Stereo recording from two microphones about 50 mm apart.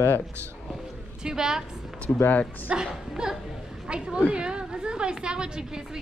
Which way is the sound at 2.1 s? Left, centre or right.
Left.